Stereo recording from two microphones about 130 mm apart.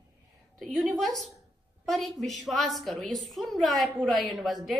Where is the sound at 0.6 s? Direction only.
Centre (ahead or behind).